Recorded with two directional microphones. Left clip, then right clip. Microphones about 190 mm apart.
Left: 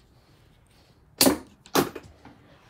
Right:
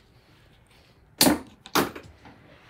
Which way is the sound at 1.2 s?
40° left (ahead or behind).